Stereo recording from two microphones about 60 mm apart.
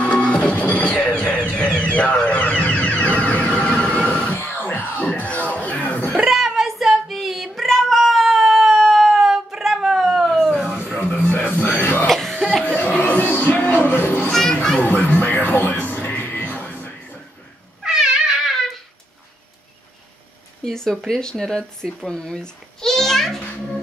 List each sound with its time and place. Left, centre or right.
0.0 s music: centre
1.5 s a sound: centre
6.3 s child singing: centre
11.0 s music: left
12.1 s cough: centre
12.6 s music: left
14.3 s children playing: centre
14.8 s music: left
17.8 s cat: centre
20.6 s a sound: centre
21.1 s speech: centre